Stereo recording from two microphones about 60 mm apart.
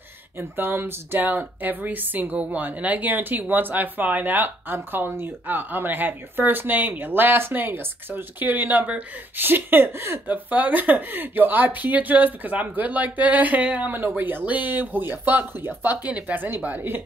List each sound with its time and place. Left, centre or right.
0.4 s speech: right
10.2 s speech: right
16.1 s speech: right